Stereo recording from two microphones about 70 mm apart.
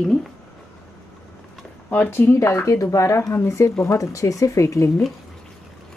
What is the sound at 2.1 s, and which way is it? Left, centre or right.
Speech, left.